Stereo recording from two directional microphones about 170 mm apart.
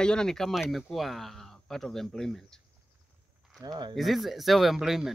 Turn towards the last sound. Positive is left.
turn(degrees=0)  # may be behind; listen again after turning